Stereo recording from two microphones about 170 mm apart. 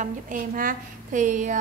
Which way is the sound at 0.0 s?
50° right (ahead or behind).